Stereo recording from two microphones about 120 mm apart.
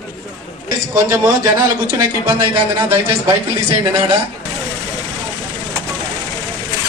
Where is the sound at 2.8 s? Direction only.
15° right (ahead or behind).